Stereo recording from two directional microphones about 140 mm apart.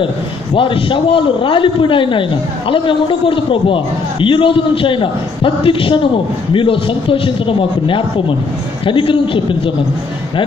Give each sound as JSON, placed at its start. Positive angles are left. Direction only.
{"t": 0.6, "sound": "a man's voice", "side_deg": 35}